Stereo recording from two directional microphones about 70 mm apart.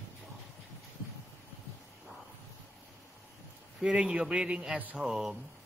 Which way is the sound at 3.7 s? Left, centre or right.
Centre.